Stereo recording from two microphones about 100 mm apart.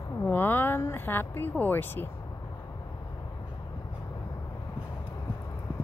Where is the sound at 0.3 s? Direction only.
20° left (ahead or behind).